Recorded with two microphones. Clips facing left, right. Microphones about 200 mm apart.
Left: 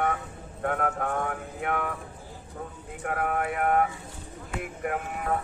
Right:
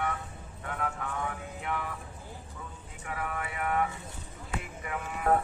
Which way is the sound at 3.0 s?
55° left (ahead or behind).